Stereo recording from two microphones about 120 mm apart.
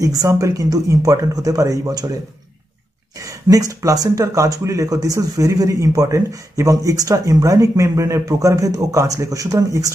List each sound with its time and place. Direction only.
0.0 s speech: 30° right (ahead or behind)
3.2 s speech: 30° right (ahead or behind)